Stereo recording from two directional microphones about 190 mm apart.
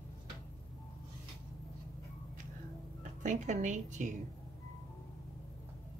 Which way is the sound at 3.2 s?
40° right (ahead or behind).